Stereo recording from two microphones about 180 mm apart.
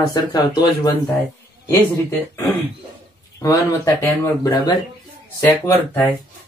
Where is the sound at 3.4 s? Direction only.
15° left (ahead or behind).